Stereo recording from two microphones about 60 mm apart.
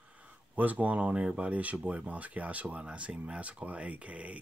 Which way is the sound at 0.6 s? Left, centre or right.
Right.